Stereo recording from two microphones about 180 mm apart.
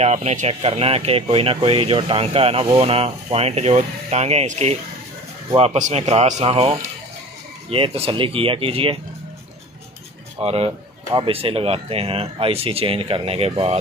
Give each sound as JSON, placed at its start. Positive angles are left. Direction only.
{"t": 0.0, "sound": "speech", "side_deg": -35}
{"t": 10.4, "sound": "speech", "side_deg": -35}